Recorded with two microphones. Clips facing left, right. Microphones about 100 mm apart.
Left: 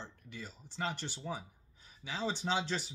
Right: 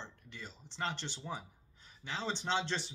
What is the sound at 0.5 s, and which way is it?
Speech, 25° right (ahead or behind).